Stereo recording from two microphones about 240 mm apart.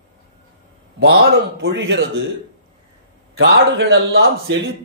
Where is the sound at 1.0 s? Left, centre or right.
Right.